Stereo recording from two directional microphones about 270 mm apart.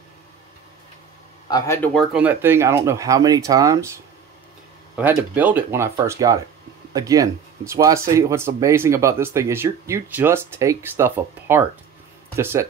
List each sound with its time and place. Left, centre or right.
1.5 s speech: centre
2.1 s speech: centre